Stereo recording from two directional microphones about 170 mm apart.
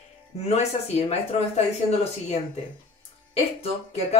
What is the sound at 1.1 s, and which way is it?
Speech, 40° left (ahead or behind).